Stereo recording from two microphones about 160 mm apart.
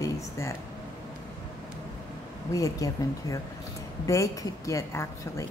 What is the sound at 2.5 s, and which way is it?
A woman's voice, 20° left (ahead or behind).